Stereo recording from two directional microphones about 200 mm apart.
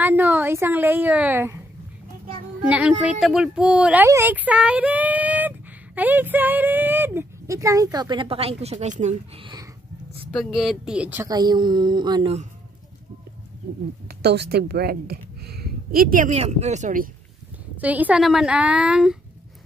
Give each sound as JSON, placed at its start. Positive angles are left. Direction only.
{"t": 0.0, "sound": "speech", "side_deg": -10}
{"t": 2.6, "sound": "speech", "side_deg": -5}
{"t": 9.4, "sound": "music", "side_deg": -20}
{"t": 10.4, "sound": "speech", "side_deg": 0}
{"t": 11.3, "sound": "a sound", "side_deg": -20}
{"t": 14.0, "sound": "speech", "side_deg": -55}
{"t": 17.7, "sound": "speech", "side_deg": -10}